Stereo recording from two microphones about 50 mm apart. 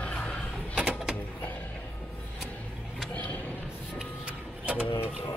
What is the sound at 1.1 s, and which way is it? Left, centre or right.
Music, left.